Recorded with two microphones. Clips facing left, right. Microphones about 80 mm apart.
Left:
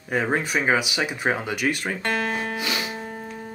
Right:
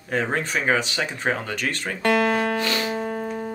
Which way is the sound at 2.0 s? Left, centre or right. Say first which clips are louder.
Right 8 dB; right.